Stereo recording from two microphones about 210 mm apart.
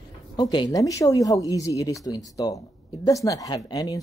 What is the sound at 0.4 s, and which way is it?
A man's voice, 20° left (ahead or behind).